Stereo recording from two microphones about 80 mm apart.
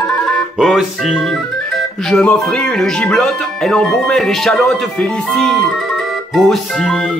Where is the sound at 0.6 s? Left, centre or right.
Centre.